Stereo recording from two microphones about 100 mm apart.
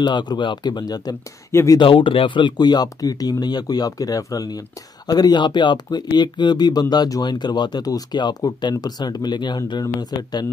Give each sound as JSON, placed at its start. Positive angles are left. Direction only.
{"t": 0.0, "sound": "speech", "side_deg": 45}
{"t": 1.5, "sound": "speech", "side_deg": 25}
{"t": 1.8, "sound": "speech", "side_deg": 60}